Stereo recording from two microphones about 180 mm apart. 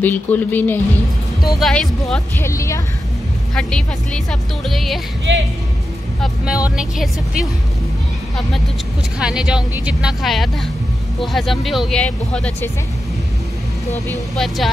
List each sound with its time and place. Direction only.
0.0 s speech: 10° left (ahead or behind)
2.4 s speech: 15° left (ahead or behind)
3.5 s speech: 5° left (ahead or behind)
5.3 s speech: 90° right
6.2 s speech: 5° right (ahead or behind)
9.2 s speech: 5° right (ahead or behind)
14.0 s speech: centre (ahead or behind)